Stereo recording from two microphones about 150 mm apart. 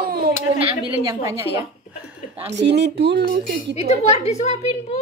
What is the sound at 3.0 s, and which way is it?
Speech, 90° right.